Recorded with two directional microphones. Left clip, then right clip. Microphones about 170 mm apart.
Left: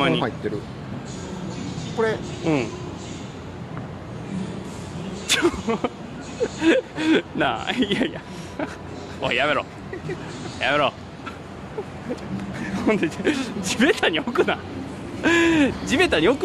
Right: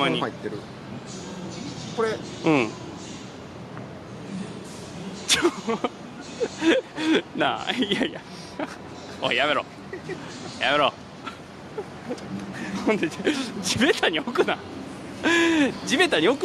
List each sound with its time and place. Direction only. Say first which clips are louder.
2.0 s speech: left 3 dB; centre (ahead or behind)
2.4 s speech: right 2 dB; 35° right (ahead or behind)
5.3 s speech: left 1 dB; 10° right (ahead or behind)
9.2 s speech: left 1 dB; 10° right (ahead or behind)
12.7 s speech: left 2 dB; centre (ahead or behind)